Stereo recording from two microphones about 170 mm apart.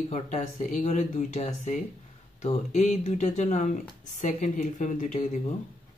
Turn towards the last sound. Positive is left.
turn(degrees=45)  # may be behind; listen again after turning